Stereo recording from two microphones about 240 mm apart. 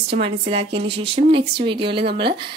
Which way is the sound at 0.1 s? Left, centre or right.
Right.